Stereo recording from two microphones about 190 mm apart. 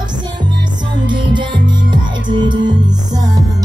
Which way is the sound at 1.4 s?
25° right (ahead or behind).